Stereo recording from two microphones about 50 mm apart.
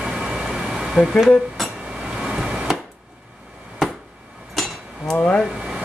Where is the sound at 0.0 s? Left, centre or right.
Centre.